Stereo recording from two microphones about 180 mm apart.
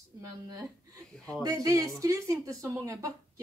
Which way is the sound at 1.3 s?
20° right (ahead or behind).